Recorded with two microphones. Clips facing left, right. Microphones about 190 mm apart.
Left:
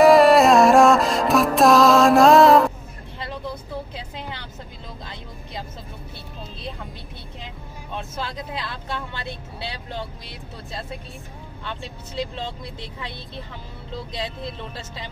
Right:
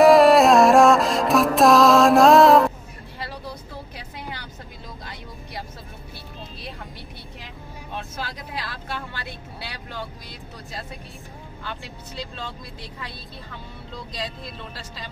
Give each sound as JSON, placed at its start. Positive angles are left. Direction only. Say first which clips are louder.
{"t": 0.0, "sound": "music", "louder": "even", "side_deg": 0}
{"t": 3.9, "sound": "vehicle", "louder": "left 2 dB", "side_deg": 25}
{"t": 8.2, "sound": "speech", "louder": "left 4 dB", "side_deg": 25}